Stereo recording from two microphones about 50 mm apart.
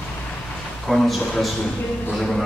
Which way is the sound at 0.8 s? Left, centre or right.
Centre.